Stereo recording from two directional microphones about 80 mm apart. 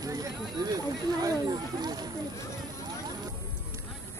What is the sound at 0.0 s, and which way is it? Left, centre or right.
Speech, right.